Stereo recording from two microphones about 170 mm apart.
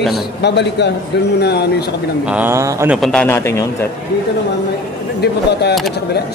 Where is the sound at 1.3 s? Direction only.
75° left (ahead or behind).